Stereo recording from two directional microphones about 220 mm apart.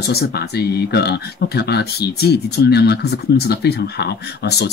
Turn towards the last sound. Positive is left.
turn(degrees=50)  # may be behind; listen again after turning